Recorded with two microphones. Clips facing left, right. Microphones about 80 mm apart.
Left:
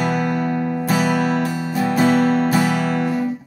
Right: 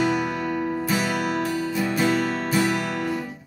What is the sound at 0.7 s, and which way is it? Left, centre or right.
Music, left.